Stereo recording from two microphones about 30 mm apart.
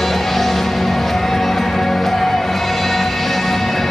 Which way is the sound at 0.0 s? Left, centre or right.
Centre.